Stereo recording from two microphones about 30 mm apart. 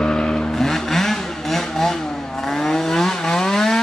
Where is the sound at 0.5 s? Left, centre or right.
Centre.